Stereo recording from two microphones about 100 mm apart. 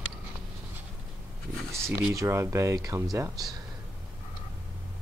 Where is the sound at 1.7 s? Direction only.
30° right (ahead or behind).